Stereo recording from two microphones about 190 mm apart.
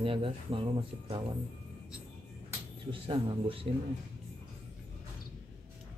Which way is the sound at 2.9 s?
25° right (ahead or behind).